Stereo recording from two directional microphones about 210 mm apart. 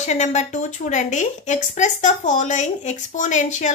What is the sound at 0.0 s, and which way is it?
A woman's voice, 35° left (ahead or behind).